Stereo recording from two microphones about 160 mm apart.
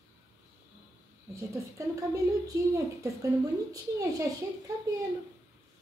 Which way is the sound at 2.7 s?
20° right (ahead or behind).